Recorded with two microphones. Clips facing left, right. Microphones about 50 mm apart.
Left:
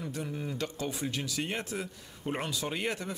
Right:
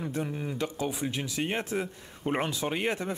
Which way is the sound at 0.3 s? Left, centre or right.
Centre.